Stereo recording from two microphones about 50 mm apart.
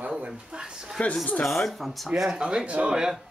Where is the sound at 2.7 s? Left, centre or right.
Right.